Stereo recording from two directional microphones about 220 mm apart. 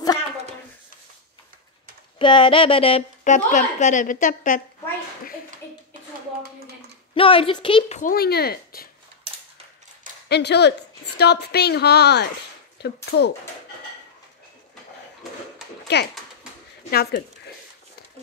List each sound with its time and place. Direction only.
2.1 s a woman's voice: 20° left (ahead or behind)
7.2 s a woman's voice: 25° left (ahead or behind)
8.0 s speech: 40° left (ahead or behind)
10.2 s a woman's voice: 50° left (ahead or behind)
15.9 s speech: 50° left (ahead or behind)